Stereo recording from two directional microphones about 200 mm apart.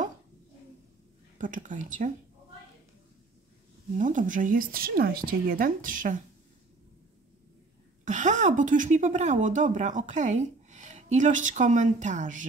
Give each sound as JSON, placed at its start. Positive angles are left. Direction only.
{"t": 1.4, "sound": "a woman's voice", "side_deg": -40}
{"t": 4.0, "sound": "speech", "side_deg": -40}
{"t": 8.0, "sound": "a woman's voice", "side_deg": -35}